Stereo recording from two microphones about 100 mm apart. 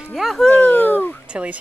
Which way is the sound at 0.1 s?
Centre (ahead or behind).